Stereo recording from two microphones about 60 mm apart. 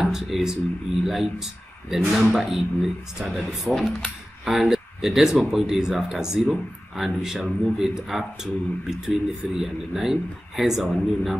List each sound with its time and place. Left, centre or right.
0.0 s speech: centre
6.4 s speech: centre
7.2 s speech: centre